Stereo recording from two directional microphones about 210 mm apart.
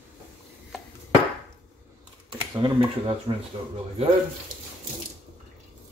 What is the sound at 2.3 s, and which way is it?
Typing, 20° right (ahead or behind).